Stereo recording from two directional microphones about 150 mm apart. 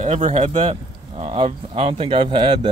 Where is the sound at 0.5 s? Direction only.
35° right (ahead or behind).